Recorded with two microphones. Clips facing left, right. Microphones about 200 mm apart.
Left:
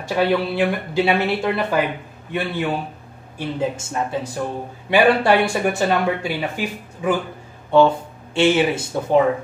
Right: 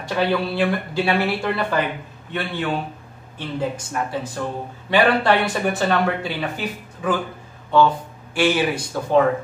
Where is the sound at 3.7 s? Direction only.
25° left (ahead or behind).